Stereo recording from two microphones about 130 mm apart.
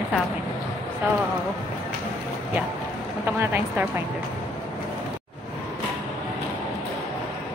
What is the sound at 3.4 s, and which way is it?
Speech, 15° right (ahead or behind).